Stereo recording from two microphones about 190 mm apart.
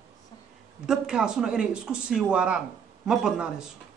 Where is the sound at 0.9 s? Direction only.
5° right (ahead or behind).